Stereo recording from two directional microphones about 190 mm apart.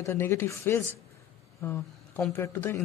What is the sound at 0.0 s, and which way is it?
Speech, 15° left (ahead or behind).